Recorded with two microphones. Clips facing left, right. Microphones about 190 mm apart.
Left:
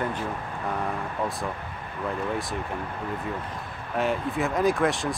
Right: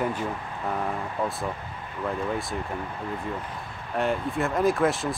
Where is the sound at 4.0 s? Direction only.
Centre (ahead or behind).